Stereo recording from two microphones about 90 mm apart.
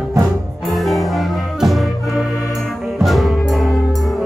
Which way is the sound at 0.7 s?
Centre (ahead or behind).